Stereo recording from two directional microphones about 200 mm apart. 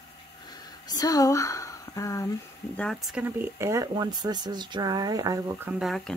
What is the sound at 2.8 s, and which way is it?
Speech, centre (ahead or behind).